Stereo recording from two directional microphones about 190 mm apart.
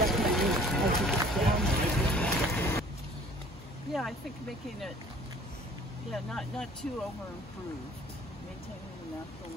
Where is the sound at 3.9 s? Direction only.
Centre (ahead or behind).